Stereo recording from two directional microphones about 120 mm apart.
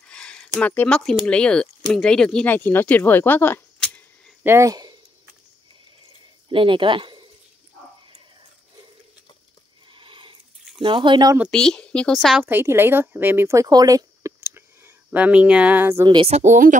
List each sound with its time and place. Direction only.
0.0 s a sound: 10° left (ahead or behind)
0.6 s speech: 15° left (ahead or behind)
4.4 s speech: 20° right (ahead or behind)
4.6 s speech: 35° right (ahead or behind)
6.5 s speech: 45° right (ahead or behind)
9.8 s a sound: 45° right (ahead or behind)
10.8 s speech: 40° right (ahead or behind)
11.5 s a woman's voice: 5° left (ahead or behind)
12.4 s speech: 20° right (ahead or behind)
14.4 s a sound: 20° right (ahead or behind)
16.3 s speech: 65° right (ahead or behind)